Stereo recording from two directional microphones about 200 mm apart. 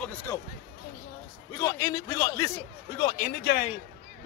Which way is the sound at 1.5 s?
15° left (ahead or behind).